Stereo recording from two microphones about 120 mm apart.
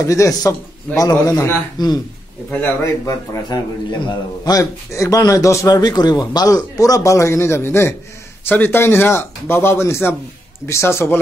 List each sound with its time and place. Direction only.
0.0 s a man's voice: 25° left (ahead or behind)
2.6 s a man's voice: 25° left (ahead or behind)